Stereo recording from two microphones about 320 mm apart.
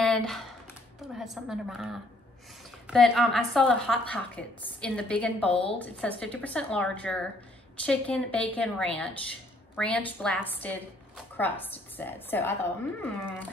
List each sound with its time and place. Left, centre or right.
0.0 s computer keyboard: centre
1.0 s a woman's voice: centre